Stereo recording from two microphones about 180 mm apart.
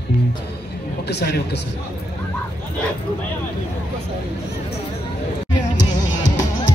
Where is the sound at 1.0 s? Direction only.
65° left (ahead or behind).